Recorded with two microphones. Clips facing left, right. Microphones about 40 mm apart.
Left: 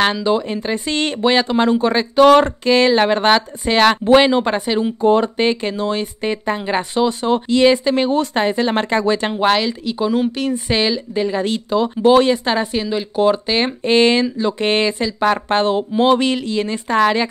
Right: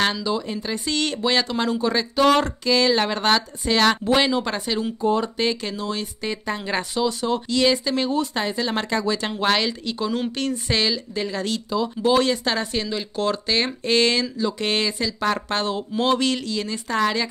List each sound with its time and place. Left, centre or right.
0.2 s speech: left
5.0 s speech: left
5.4 s speech: left
8.1 s speech: left
9.5 s speech: centre
10.5 s speech: centre
11.7 s speech: left
12.2 s speech: left